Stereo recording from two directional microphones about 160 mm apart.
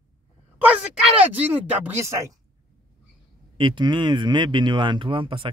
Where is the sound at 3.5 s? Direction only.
30° right (ahead or behind).